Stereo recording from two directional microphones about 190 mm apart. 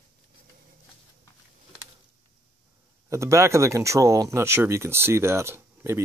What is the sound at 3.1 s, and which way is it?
Speech, 15° right (ahead or behind).